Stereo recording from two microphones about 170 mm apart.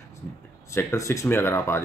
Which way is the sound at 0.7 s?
15° left (ahead or behind).